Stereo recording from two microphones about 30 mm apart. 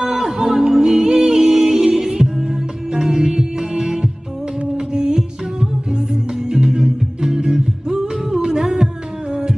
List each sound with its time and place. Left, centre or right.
0.0 s music: right